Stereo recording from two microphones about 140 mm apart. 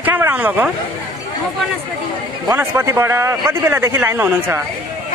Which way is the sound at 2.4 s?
20° right (ahead or behind).